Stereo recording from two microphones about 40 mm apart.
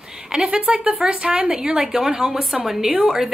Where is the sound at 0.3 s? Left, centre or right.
Centre.